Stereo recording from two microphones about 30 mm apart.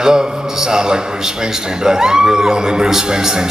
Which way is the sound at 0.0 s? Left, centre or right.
Right.